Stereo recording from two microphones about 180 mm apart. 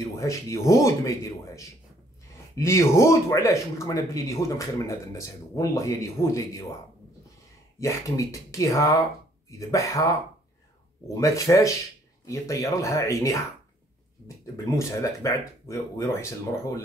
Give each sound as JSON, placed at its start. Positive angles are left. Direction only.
{"t": 0.1, "sound": "speech", "side_deg": 15}
{"t": 7.8, "sound": "speech", "side_deg": 15}
{"t": 11.1, "sound": "speech", "side_deg": 15}